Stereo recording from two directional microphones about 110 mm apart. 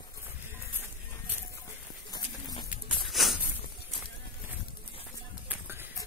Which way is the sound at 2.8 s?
Centre (ahead or behind).